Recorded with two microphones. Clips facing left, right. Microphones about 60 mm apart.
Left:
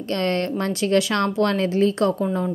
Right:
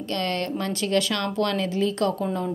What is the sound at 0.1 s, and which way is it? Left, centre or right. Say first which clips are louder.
A woman's voice: left 4 dB; left.